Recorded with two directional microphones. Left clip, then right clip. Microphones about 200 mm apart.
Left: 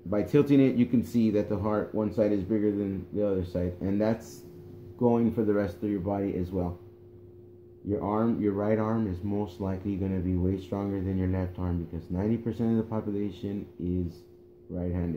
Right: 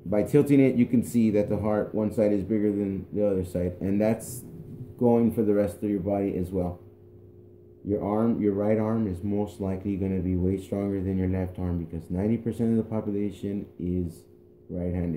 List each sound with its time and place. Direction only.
0.1 s speech: 20° right (ahead or behind)
8.0 s speech: 15° right (ahead or behind)